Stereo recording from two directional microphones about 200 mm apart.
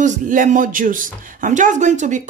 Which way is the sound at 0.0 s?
40° right (ahead or behind).